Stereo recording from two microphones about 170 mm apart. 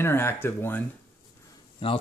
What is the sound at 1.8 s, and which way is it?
Speech, 30° left (ahead or behind).